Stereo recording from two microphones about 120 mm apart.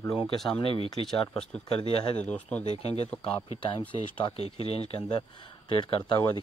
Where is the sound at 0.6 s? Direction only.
50° left (ahead or behind).